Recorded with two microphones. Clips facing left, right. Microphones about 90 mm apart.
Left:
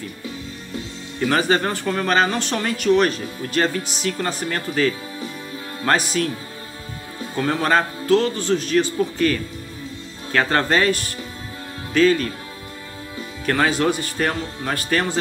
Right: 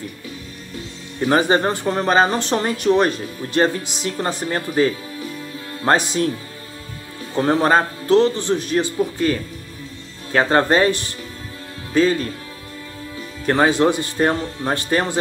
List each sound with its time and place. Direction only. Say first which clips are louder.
1.2 s speech: right 3 dB; 25° right (ahead or behind)
7.3 s speech: right 3 dB; 30° right (ahead or behind)
13.5 s speech: right 3 dB; 25° right (ahead or behind)